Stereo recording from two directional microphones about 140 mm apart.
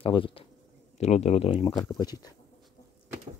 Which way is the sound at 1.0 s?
50° left (ahead or behind).